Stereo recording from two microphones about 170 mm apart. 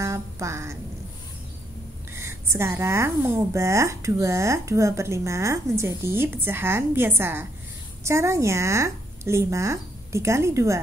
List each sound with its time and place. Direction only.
0.0 s speech: 15° right (ahead or behind)
2.1 s a woman's voice: 15° right (ahead or behind)